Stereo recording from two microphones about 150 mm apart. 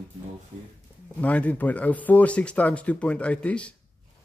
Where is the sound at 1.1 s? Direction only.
10° left (ahead or behind).